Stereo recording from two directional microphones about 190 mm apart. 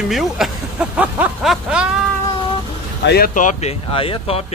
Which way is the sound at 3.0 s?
55° left (ahead or behind).